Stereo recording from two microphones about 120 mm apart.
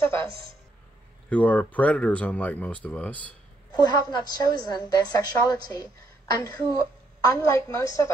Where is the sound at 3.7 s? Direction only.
35° left (ahead or behind).